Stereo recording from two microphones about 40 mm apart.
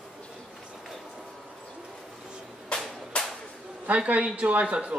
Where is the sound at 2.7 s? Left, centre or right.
Left.